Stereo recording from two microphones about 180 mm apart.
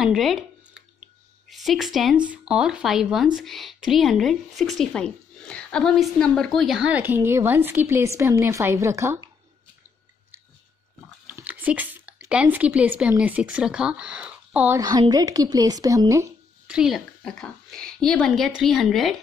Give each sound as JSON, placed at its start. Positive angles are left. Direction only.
{"t": 0.0, "sound": "a sound", "side_deg": 0}
{"t": 2.3, "sound": "a woman's voice", "side_deg": -5}
{"t": 11.2, "sound": "a woman's voice", "side_deg": -10}
{"t": 14.8, "sound": "a woman's voice", "side_deg": -20}
{"t": 16.6, "sound": "speech", "side_deg": -5}